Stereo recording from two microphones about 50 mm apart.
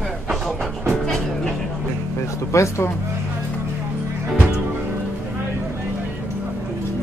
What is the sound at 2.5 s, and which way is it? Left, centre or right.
Speech, left.